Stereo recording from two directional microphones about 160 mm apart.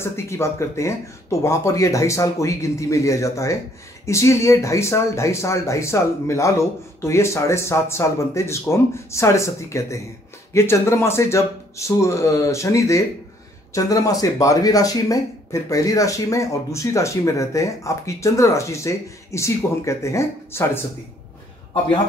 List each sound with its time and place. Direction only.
0.0 s speech: 15° left (ahead or behind)